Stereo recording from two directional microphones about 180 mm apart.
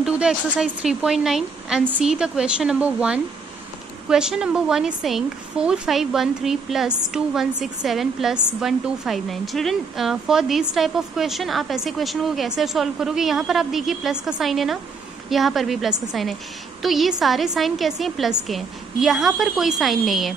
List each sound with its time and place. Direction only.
0.0 s a woman's voice: 5° right (ahead or behind)